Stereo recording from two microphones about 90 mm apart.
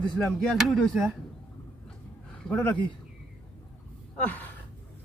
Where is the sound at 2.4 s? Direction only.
10° left (ahead or behind).